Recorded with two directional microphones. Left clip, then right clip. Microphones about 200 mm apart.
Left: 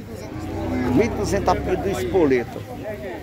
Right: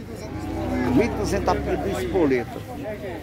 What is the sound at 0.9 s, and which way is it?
Speech, 10° left (ahead or behind).